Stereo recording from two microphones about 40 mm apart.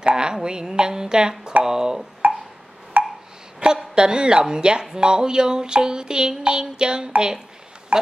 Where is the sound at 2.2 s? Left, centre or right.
Right.